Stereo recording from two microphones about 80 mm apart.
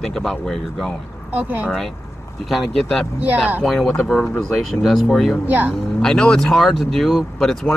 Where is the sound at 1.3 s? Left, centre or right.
Right.